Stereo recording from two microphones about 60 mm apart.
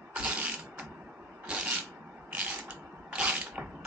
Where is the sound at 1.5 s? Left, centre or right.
Centre.